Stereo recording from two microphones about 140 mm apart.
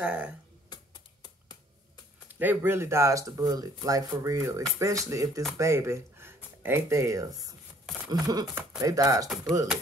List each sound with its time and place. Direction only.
0.0 s speech: 10° right (ahead or behind)
2.3 s speech: 15° right (ahead or behind)